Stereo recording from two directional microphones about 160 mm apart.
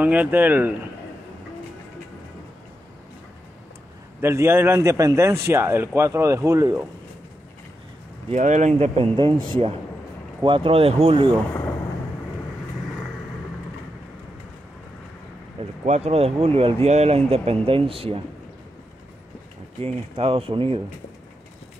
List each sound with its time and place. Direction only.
0.0 s a man's voice: 10° right (ahead or behind)
4.2 s a man's voice: 15° right (ahead or behind)
8.3 s speech: 50° right (ahead or behind)
15.8 s speech: 40° right (ahead or behind)
19.8 s speech: 35° right (ahead or behind)